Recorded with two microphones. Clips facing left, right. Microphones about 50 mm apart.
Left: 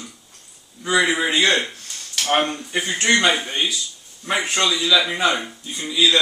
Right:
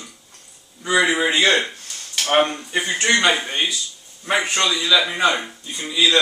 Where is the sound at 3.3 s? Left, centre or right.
Centre.